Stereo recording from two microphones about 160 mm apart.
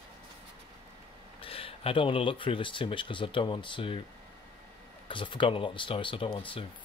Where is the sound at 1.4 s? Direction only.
35° left (ahead or behind).